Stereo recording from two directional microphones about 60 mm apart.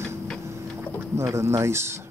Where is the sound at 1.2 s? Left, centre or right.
Right.